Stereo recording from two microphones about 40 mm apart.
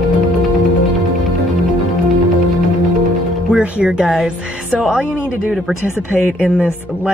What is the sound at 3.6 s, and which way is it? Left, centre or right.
Speech, right.